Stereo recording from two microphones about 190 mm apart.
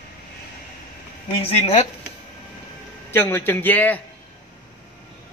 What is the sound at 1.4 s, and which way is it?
Speech, 35° left (ahead or behind).